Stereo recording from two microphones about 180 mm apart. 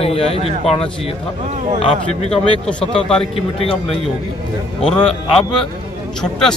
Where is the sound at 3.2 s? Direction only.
30° left (ahead or behind).